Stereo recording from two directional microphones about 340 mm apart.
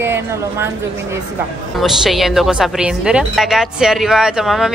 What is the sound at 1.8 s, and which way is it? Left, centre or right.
A woman's voice, centre.